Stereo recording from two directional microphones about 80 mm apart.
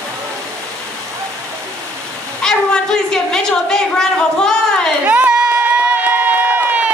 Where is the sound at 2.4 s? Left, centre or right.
Centre.